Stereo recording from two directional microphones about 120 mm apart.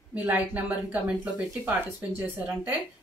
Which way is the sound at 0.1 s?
15° right (ahead or behind).